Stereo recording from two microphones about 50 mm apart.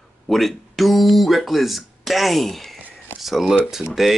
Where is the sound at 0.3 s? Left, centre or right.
Centre.